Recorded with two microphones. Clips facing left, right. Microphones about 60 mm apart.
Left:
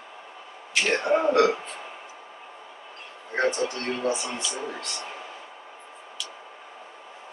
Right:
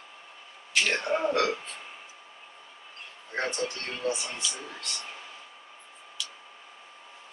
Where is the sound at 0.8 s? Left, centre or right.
Left.